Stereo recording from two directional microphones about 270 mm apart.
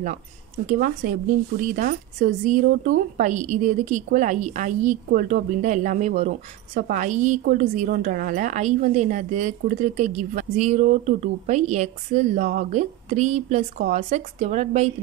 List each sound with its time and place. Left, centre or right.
0.7 s a woman's voice: right